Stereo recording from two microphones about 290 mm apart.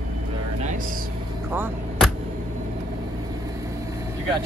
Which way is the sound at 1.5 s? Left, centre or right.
Centre.